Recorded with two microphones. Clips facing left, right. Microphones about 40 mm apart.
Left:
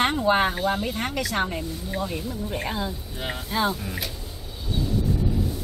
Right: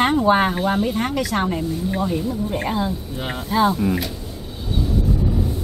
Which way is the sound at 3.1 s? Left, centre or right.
Centre.